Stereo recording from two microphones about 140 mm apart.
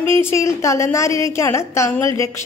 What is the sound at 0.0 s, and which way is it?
A woman's voice, 15° left (ahead or behind).